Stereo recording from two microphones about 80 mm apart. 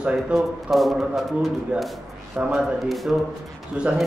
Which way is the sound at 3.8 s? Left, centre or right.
Centre.